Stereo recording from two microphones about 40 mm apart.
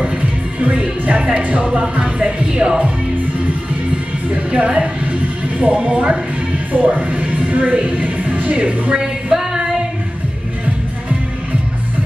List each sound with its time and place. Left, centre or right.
0.0 s music: right
1.0 s speech: right
1.7 s music: right
4.6 s speech: right
5.6 s music: right
6.7 s speech: right
9.3 s singing: centre